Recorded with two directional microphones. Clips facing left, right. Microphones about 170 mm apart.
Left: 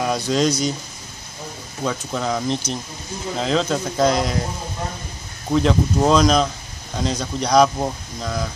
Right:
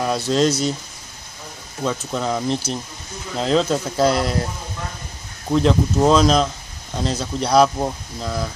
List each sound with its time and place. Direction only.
0.0 s speech: centre (ahead or behind)
1.8 s speech: centre (ahead or behind)
5.5 s speech: centre (ahead or behind)